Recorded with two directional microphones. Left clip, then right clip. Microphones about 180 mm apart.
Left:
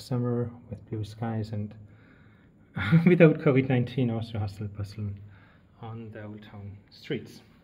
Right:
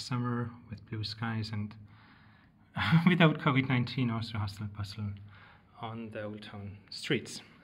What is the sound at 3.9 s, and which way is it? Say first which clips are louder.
Speech: left 5 dB; 65° right (ahead or behind).